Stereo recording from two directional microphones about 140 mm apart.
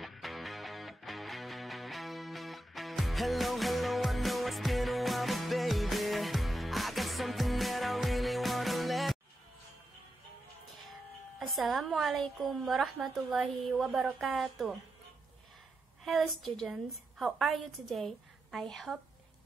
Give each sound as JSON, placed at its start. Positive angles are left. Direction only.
{"t": 0.0, "sound": "music", "side_deg": 0}
{"t": 10.9, "sound": "speech", "side_deg": 0}
{"t": 16.1, "sound": "speech", "side_deg": 0}